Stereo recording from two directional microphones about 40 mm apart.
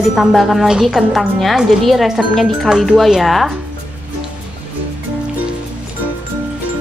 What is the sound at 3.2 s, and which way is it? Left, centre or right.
Speech, centre.